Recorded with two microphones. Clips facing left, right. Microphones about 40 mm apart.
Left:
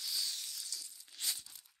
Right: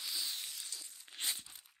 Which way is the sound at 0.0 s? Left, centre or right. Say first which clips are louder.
Even; right.